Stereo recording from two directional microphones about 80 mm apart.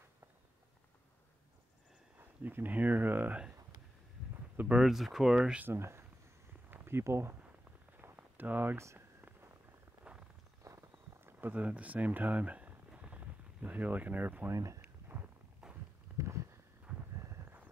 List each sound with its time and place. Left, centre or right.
2.1 s speech: right
4.7 s speech: centre
5.6 s speech: right
8.0 s a sound: right
8.7 s speech: right
10.6 s a sound: right
11.5 s speech: centre
14.5 s speech: right
14.8 s a sound: right
15.6 s walk: centre
16.2 s a sound: right
16.9 s horse: centre